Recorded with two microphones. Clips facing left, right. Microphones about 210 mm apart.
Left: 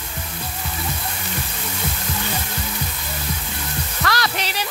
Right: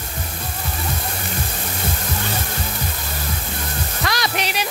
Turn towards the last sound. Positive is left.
turn(degrees=-15)  # may be behind; listen again after turning